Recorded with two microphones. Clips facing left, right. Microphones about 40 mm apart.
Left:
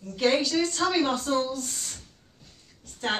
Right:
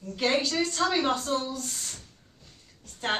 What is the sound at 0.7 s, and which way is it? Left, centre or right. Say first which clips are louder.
Speech: left 1 dB; centre.